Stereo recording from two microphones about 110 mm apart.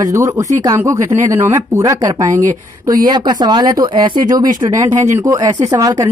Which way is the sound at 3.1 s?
40° right (ahead or behind).